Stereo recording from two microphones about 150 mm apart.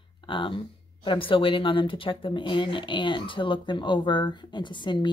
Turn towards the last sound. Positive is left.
turn(degrees=30)  # may be behind; listen again after turning